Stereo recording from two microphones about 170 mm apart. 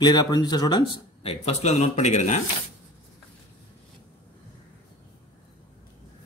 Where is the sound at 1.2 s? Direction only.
35° left (ahead or behind).